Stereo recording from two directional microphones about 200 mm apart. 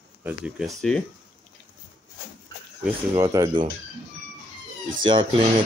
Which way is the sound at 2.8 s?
15° right (ahead or behind).